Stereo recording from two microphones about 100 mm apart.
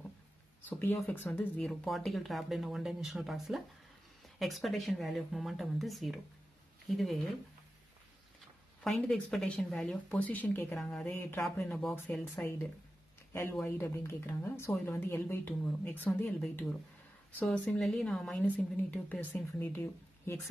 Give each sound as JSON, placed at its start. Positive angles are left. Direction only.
{"t": 0.7, "sound": "a woman's voice", "side_deg": 20}
{"t": 1.6, "sound": "speech", "side_deg": 0}
{"t": 8.8, "sound": "speech", "side_deg": 5}
{"t": 10.8, "sound": "speech", "side_deg": 5}
{"t": 11.1, "sound": "a woman's voice", "side_deg": 20}
{"t": 13.3, "sound": "a woman's voice", "side_deg": 25}
{"t": 17.5, "sound": "speech", "side_deg": 5}
{"t": 19.6, "sound": "speech", "side_deg": 25}